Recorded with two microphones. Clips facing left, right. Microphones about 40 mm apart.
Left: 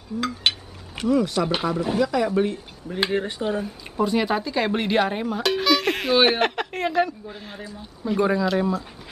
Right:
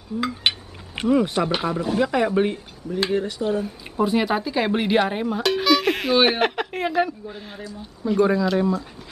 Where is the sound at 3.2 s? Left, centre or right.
Left.